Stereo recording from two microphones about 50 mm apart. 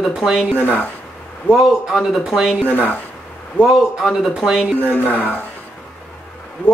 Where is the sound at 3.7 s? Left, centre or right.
Centre.